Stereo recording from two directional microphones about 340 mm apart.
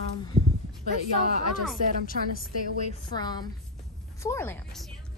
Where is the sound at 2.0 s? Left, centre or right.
Left.